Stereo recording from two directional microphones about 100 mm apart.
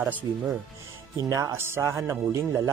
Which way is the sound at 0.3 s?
40° right (ahead or behind).